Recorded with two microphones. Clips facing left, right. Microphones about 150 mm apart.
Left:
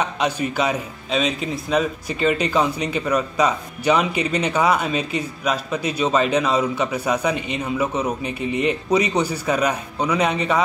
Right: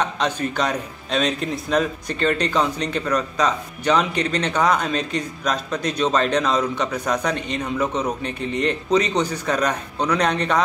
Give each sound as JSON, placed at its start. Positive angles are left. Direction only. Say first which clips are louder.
{"t": 0.0, "sound": "speech", "louder": "left 1 dB", "side_deg": 10}